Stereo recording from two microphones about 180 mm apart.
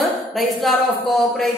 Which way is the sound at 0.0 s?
Centre (ahead or behind).